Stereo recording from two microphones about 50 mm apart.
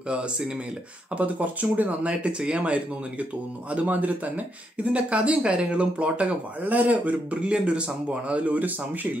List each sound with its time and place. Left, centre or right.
1.1 s speech: right